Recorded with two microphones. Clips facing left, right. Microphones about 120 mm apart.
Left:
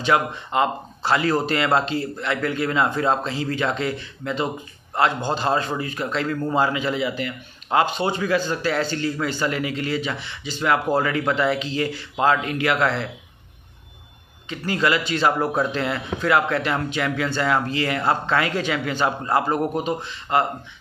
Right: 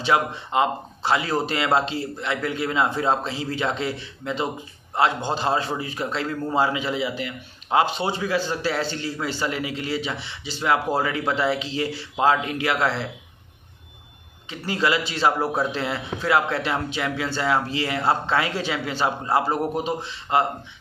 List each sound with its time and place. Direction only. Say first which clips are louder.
0.0 s a man's voice: left 1 dB; 20° right (ahead or behind)
14.5 s a man's voice: left 1 dB; 25° right (ahead or behind)